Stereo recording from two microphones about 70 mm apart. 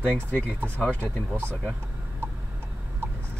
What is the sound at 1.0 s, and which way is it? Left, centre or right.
Speech, right.